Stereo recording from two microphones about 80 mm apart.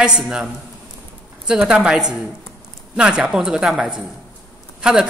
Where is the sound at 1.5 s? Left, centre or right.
Centre.